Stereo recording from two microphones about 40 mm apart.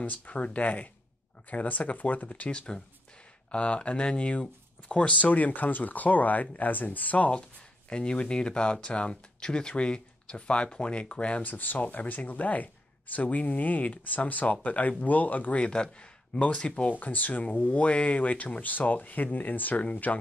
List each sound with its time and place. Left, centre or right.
0.3 s speech: left
2.5 s speech: left
7.9 s speech: left
11.4 s speech: left
15.6 s speech: left
17.0 s speech: left
17.5 s speech: left